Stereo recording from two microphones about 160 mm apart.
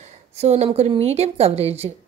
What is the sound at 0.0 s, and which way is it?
A woman's voice, 45° right (ahead or behind).